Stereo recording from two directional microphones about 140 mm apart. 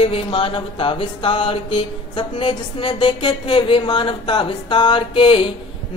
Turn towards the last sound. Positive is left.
turn(degrees=35)  # may be behind; listen again after turning